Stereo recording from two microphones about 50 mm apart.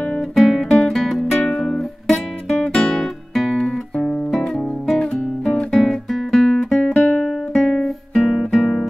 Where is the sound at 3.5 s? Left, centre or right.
Centre.